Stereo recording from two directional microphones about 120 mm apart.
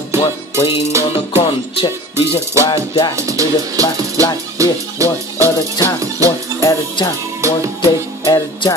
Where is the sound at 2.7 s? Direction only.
50° left (ahead or behind).